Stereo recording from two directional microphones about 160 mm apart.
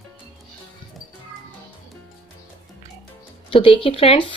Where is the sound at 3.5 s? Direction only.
35° left (ahead or behind).